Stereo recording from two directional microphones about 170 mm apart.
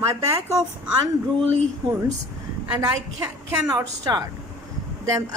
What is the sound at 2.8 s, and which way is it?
A woman's voice, 20° right (ahead or behind).